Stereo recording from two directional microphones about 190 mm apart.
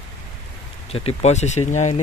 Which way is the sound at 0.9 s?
35° left (ahead or behind).